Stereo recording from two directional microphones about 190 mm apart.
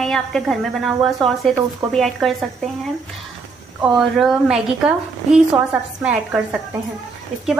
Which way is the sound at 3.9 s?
Centre (ahead or behind).